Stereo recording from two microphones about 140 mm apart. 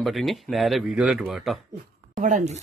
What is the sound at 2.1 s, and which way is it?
Speech, 65° right (ahead or behind).